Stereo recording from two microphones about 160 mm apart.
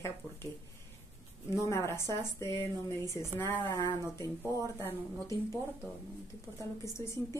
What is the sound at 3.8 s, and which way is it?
A woman's voice, 25° left (ahead or behind).